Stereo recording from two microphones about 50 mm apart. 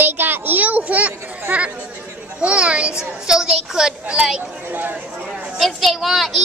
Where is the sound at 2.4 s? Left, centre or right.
Right.